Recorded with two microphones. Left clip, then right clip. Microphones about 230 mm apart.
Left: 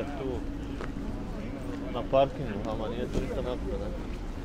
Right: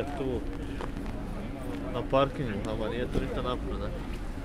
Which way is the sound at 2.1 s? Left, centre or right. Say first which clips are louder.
Left 2 dB; right.